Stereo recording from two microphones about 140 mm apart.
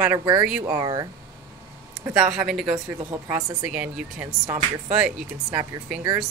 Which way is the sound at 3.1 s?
15° right (ahead or behind).